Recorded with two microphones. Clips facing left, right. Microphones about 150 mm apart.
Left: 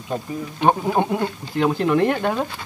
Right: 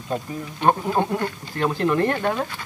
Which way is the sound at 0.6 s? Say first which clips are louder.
Left 2 dB; 15° left (ahead or behind).